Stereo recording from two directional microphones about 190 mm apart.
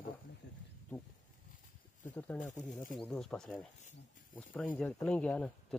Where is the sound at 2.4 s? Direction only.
40° left (ahead or behind).